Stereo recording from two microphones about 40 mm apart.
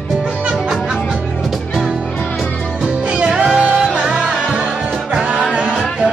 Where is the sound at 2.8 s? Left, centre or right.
Right.